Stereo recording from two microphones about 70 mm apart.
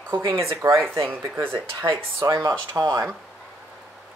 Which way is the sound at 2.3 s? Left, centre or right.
Right.